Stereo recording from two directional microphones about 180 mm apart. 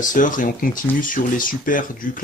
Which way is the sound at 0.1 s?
45° left (ahead or behind).